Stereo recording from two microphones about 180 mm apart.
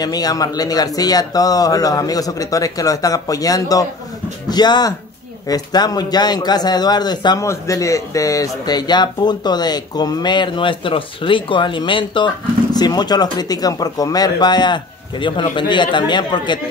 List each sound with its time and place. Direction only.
0.0 s a man's voice: 20° left (ahead or behind)